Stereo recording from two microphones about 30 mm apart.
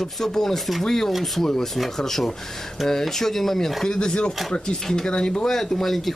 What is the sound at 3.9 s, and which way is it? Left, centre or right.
Speech, left.